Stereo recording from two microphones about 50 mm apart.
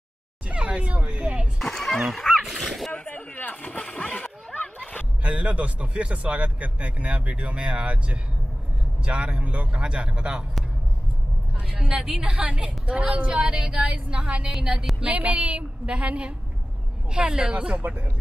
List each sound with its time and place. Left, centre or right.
0.5 s speech: right
1.6 s a sound: centre
2.4 s speech: centre
2.9 s boat: left
3.9 s a sound: left
5.2 s speech: right
11.5 s speech: right
15.0 s speech: right
17.8 s speech: right